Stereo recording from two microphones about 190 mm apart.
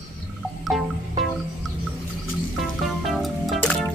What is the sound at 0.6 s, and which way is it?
Music, centre (ahead or behind).